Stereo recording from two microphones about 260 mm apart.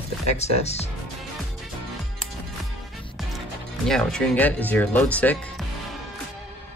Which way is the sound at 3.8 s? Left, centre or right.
Centre.